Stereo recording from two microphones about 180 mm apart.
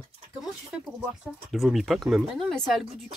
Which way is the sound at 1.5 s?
Centre (ahead or behind).